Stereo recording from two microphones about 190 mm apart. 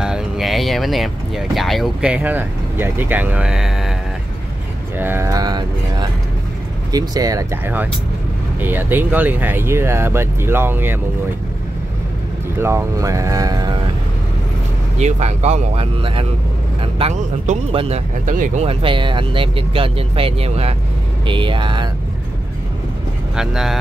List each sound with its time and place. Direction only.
0.0 s speech: centre (ahead or behind)
4.9 s speech: 10° right (ahead or behind)
12.5 s speech: 15° right (ahead or behind)
15.0 s speech: 35° right (ahead or behind)
23.3 s speech: 5° right (ahead or behind)